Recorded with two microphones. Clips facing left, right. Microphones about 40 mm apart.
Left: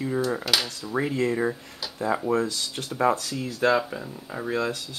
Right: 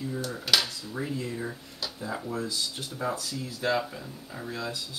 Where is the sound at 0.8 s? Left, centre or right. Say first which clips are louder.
Left 8 dB; left.